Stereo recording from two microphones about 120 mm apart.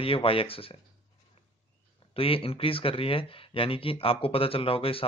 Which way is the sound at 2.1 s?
50° left (ahead or behind).